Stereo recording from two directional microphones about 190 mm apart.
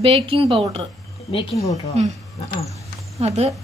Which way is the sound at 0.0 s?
30° right (ahead or behind).